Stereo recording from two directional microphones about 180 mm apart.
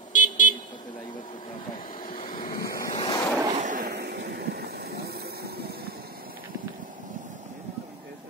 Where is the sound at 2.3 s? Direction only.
25° left (ahead or behind).